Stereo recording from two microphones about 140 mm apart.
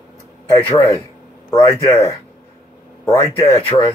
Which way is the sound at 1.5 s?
20° left (ahead or behind).